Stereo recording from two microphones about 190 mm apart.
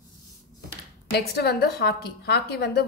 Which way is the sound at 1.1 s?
60° left (ahead or behind).